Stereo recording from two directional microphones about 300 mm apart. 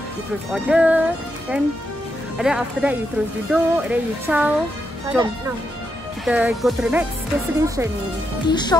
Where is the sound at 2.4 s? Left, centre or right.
Centre.